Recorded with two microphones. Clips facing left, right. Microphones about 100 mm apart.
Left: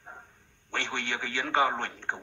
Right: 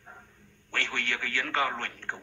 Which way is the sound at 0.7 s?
20° left (ahead or behind).